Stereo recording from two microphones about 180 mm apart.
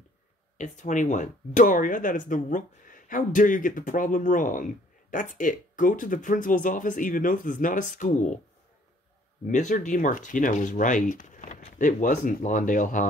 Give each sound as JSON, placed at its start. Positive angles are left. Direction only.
{"t": 0.6, "sound": "speech", "side_deg": 45}
{"t": 9.5, "sound": "speech", "side_deg": 40}